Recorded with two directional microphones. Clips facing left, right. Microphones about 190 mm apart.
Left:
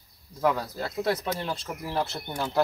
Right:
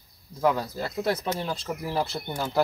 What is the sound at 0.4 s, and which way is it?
Speech, centre (ahead or behind).